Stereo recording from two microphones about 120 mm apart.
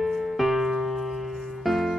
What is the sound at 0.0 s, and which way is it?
Music, centre (ahead or behind).